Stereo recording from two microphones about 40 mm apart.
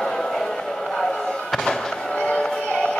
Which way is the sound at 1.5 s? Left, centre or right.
Centre.